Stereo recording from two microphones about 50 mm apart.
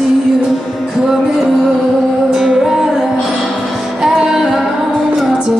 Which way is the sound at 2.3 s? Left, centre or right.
Centre.